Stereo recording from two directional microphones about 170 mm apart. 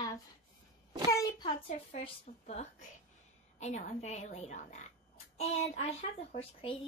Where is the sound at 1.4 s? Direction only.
35° left (ahead or behind).